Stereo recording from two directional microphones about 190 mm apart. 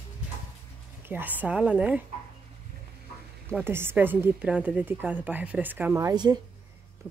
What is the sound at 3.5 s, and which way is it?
A woman's voice, 10° right (ahead or behind).